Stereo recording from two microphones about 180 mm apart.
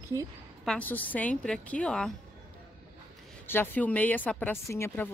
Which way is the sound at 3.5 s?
10° left (ahead or behind).